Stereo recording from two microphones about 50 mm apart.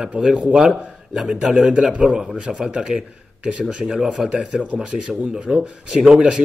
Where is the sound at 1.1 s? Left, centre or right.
Centre.